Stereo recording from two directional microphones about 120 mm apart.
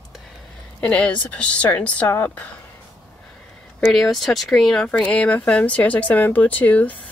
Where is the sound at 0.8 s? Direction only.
10° left (ahead or behind).